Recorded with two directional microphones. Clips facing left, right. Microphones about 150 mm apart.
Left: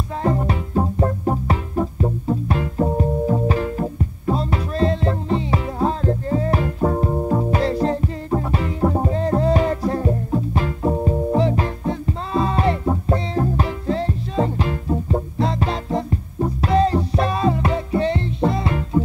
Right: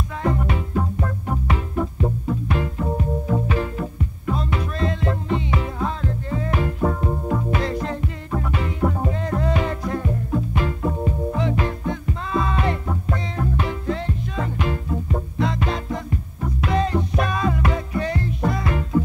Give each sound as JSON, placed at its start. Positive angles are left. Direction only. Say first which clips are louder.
{"t": 0.2, "sound": "music", "louder": "left 2 dB", "side_deg": 35}